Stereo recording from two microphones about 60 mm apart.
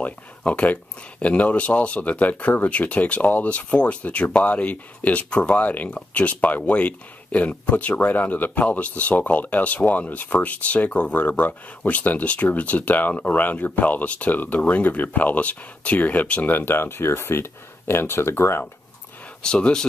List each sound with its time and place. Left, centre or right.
0.0 s speech: left
16.5 s speech: left
19.4 s speech: centre